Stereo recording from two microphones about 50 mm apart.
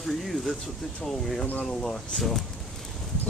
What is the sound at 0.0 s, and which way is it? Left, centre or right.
Speech, centre.